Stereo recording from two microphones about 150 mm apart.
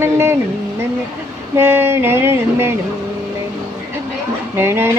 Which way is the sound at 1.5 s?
15° right (ahead or behind).